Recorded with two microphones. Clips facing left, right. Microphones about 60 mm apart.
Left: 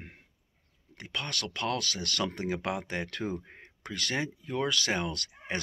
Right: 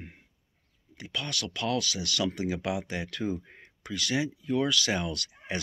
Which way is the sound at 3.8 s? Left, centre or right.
Left.